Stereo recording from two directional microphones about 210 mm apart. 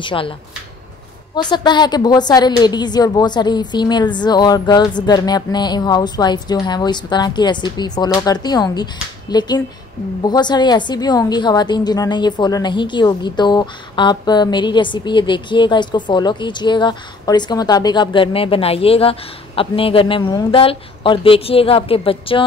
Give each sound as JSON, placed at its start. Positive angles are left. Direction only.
{"t": 0.0, "sound": "a woman's voice", "side_deg": 25}
{"t": 1.3, "sound": "a woman's voice", "side_deg": 20}